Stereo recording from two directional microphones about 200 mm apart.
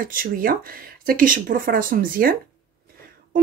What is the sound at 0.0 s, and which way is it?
Speech, 45° right (ahead or behind).